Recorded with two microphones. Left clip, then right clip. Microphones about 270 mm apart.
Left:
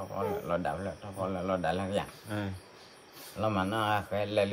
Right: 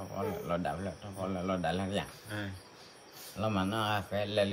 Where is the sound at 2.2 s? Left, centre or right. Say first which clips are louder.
Left 3 dB; centre.